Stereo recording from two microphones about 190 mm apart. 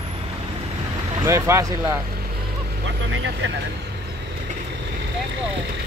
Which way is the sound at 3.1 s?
75° right (ahead or behind).